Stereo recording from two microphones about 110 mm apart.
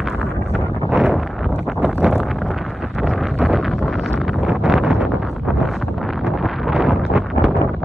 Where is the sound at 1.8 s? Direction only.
5° right (ahead or behind).